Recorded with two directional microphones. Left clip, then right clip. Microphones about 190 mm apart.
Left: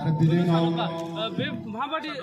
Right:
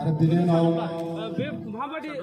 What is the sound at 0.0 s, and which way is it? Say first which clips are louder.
Speech: right 1 dB; 45° right (ahead or behind).